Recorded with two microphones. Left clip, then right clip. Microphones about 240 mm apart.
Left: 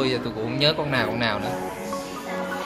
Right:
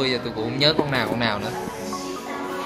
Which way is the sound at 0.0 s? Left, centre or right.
Centre.